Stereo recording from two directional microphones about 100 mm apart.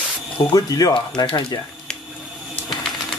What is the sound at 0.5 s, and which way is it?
Speech, 40° left (ahead or behind).